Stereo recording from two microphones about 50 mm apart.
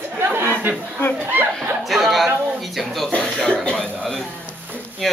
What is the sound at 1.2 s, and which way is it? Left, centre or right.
Speech, right.